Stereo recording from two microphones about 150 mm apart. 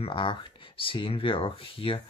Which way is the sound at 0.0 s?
35° left (ahead or behind).